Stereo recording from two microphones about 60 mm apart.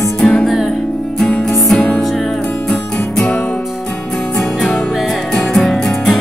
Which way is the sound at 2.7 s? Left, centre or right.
Centre.